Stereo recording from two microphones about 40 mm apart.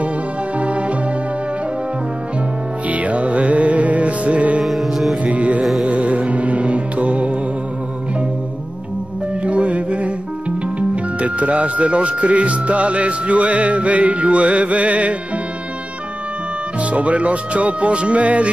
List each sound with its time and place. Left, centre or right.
0.6 s music: right
2.9 s music: right
4.6 s music: centre
5.2 s music: right
9.4 s music: right
10.8 s speech: right
16.9 s speech: right